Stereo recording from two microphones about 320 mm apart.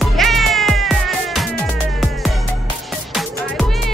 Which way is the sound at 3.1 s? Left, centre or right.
Centre.